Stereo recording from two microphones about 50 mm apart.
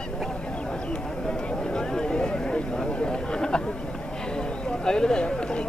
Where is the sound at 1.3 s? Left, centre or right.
Centre.